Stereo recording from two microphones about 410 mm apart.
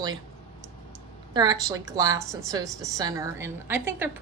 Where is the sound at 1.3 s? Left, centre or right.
Centre.